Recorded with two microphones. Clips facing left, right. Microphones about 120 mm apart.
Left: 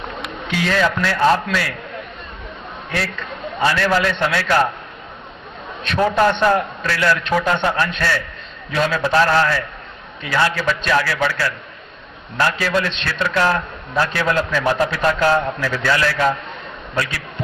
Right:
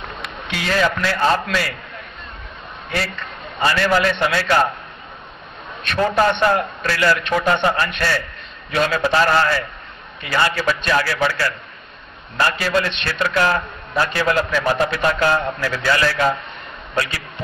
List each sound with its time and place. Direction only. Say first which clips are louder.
0.5 s a man's voice: left 1 dB; 5° right (ahead or behind)
2.9 s a man's voice: even; centre (ahead or behind)
5.9 s a man's voice: left 1 dB; centre (ahead or behind)